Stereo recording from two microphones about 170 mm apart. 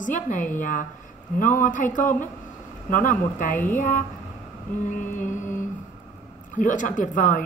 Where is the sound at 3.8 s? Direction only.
50° left (ahead or behind).